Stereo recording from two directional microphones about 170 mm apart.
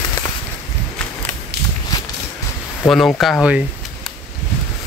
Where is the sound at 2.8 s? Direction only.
5° left (ahead or behind).